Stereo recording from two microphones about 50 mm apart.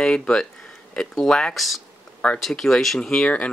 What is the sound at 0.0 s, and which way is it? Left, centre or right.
Speech, centre.